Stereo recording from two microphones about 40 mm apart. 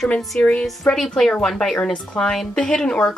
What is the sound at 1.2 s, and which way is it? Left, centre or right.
A woman's voice, centre.